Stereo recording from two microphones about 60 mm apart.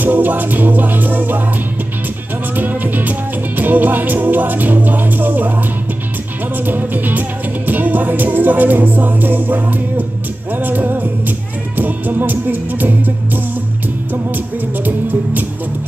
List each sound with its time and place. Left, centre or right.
0.0 s music: right
2.5 s music: right
6.5 s music: right
14.9 s music: right